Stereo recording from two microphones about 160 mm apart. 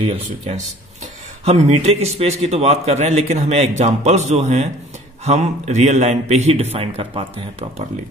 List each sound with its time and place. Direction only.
1.4 s a man's voice: 45° right (ahead or behind)